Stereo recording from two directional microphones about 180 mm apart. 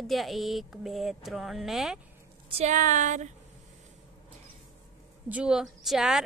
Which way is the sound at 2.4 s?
35° right (ahead or behind).